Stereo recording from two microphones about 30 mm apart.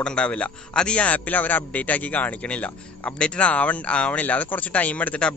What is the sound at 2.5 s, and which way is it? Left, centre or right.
Speech, left.